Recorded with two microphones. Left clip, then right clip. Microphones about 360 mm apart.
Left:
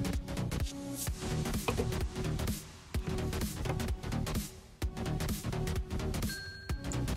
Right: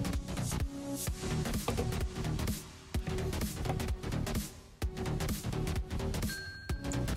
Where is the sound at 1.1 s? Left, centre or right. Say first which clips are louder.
Even; centre.